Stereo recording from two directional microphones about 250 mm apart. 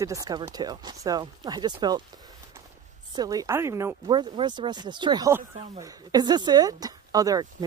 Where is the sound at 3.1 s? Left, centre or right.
Centre.